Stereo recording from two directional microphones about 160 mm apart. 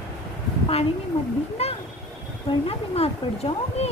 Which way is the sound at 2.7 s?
40° left (ahead or behind).